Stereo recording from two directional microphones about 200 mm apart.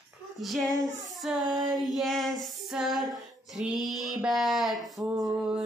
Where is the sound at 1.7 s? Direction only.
Centre (ahead or behind).